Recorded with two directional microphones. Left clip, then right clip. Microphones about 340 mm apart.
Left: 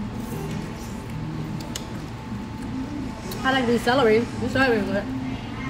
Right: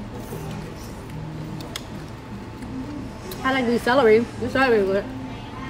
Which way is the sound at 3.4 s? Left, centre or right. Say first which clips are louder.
Even; right.